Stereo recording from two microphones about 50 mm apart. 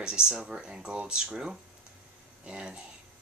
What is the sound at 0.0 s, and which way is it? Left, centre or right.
Speech, centre.